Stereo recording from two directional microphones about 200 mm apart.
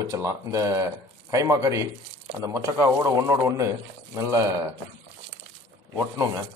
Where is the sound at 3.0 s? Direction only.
15° right (ahead or behind).